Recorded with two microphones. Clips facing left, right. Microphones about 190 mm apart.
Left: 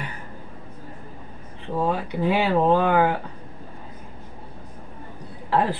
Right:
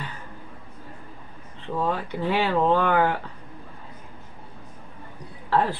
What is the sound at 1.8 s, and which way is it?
Speech, 15° left (ahead or behind).